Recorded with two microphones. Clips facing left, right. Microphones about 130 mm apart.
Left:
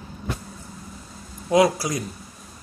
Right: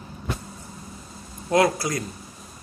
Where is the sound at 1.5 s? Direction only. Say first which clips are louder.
Left 2 dB; 15° left (ahead or behind).